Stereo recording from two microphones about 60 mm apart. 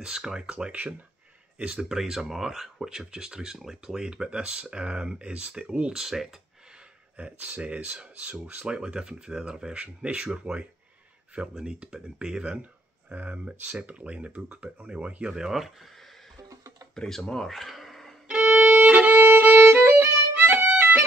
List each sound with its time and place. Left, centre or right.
0.0 s speech: centre
7.2 s speech: right
13.1 s speech: right; by 15.9 s centre
16.9 s speech: centre
18.3 s violin: centre